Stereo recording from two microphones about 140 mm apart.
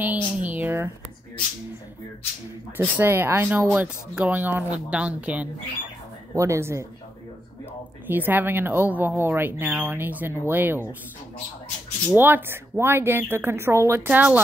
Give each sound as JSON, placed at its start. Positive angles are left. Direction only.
{"t": 0.0, "sound": "speech", "side_deg": -10}
{"t": 2.8, "sound": "speech", "side_deg": -15}
{"t": 6.3, "sound": "speech", "side_deg": -20}
{"t": 8.1, "sound": "speech", "side_deg": -15}
{"t": 12.2, "sound": "speech", "side_deg": -15}